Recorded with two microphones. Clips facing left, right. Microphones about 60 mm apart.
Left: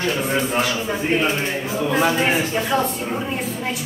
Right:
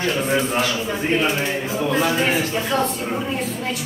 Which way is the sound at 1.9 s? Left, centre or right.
Centre.